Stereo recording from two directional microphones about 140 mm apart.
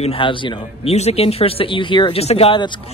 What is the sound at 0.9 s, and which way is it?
Speech, 50° left (ahead or behind).